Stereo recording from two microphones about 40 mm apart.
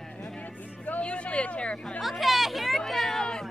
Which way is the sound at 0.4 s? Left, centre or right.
Left.